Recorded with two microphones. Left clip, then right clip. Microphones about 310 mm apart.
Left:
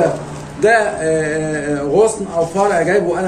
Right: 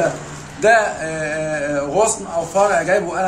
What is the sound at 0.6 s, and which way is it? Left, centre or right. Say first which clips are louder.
Male singing: left 1 dB; centre.